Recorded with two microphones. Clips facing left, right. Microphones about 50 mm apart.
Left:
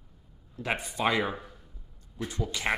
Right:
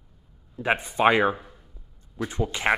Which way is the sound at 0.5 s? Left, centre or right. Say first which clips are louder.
Right 7 dB; right.